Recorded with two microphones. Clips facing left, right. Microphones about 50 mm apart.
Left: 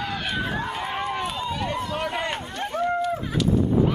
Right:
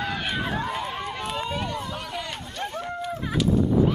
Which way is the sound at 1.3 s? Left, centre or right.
Centre.